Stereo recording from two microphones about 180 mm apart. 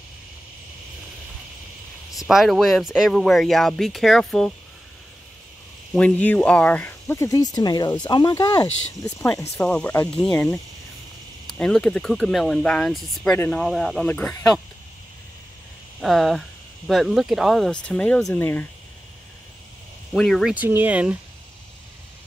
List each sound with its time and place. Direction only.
2.1 s speech: centre (ahead or behind)
5.9 s speech: 10° left (ahead or behind)
16.0 s speech: centre (ahead or behind)
20.1 s speech: centre (ahead or behind)
20.5 s speech: 10° right (ahead or behind)